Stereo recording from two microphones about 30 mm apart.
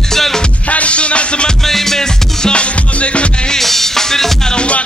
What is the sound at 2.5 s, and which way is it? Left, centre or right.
Music, left.